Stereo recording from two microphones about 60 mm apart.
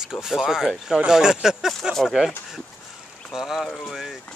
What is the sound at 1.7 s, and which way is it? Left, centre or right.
Speech, centre.